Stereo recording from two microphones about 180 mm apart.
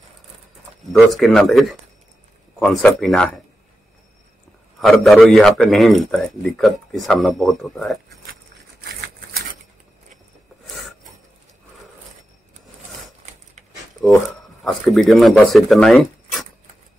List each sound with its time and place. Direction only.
0.9 s a man's voice: centre (ahead or behind)
4.7 s a man's voice: centre (ahead or behind)
14.6 s speech: centre (ahead or behind)